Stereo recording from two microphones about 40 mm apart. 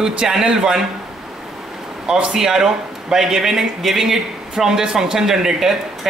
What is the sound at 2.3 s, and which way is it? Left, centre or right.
Speech, centre.